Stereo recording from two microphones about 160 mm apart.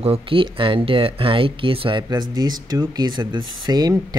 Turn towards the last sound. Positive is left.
turn(degrees=-25)  # may be behind; listen again after turning